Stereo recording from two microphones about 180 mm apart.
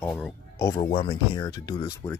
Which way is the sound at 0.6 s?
20° left (ahead or behind).